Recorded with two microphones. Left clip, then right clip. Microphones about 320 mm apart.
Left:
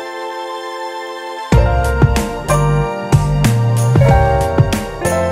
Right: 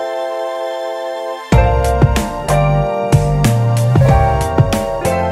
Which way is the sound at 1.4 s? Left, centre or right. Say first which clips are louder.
Right 2 dB; centre.